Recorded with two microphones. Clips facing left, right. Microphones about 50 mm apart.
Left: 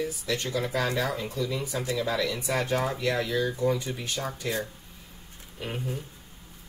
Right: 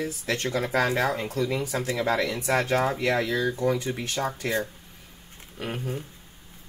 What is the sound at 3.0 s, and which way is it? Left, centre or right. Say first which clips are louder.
Speech: right 2 dB; right.